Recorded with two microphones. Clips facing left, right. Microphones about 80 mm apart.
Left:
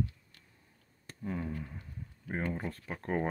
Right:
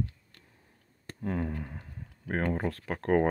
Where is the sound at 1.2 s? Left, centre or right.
Right.